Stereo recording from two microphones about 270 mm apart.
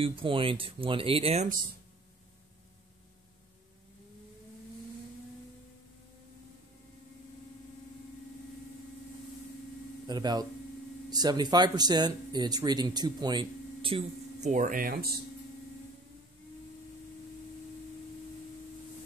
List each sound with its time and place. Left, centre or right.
0.0 s speech: centre
10.0 s speech: centre; by 15.0 s right